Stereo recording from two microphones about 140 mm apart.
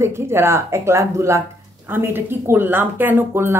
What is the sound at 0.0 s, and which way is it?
A woman's voice, 20° right (ahead or behind).